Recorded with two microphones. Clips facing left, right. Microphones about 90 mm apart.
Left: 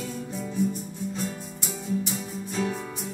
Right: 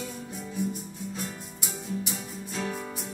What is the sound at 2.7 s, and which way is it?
Music, 5° right (ahead or behind).